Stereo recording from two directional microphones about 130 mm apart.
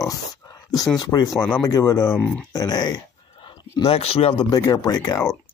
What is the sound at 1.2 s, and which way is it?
Speech, 5° left (ahead or behind).